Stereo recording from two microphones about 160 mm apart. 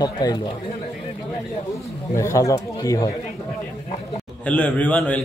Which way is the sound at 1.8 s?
20° left (ahead or behind).